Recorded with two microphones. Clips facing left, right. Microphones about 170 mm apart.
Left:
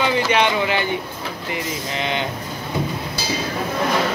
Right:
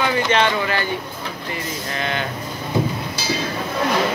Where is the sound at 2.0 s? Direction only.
20° left (ahead or behind).